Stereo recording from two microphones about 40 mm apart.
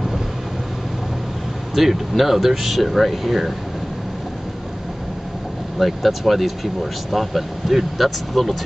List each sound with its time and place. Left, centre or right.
1.8 s speech: centre
5.8 s speech: centre